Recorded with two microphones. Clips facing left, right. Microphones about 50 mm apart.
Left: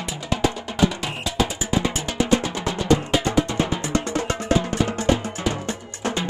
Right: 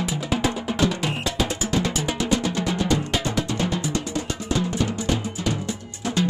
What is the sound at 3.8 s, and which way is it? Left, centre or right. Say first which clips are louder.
Music: left 3 dB; left.